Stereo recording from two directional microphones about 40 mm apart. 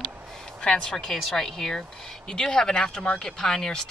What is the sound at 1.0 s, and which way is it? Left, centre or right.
Speech, centre.